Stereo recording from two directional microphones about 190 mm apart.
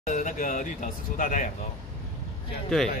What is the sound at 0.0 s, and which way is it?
Speech, 40° left (ahead or behind).